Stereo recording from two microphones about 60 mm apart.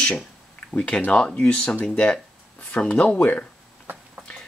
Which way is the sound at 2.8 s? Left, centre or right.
Centre.